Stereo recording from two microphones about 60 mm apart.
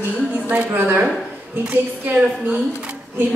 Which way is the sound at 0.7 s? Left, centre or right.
Right.